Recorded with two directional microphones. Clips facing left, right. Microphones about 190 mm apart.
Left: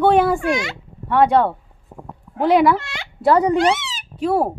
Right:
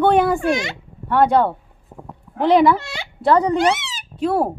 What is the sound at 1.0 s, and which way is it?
A woman's voice, centre (ahead or behind).